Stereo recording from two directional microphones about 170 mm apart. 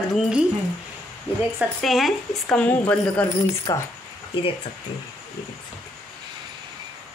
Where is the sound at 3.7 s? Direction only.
20° left (ahead or behind).